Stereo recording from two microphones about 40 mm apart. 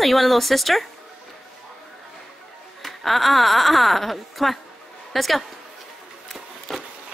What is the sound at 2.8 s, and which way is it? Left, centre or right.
A woman's voice, centre.